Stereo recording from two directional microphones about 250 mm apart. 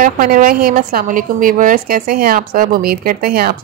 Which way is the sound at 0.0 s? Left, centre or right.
Right.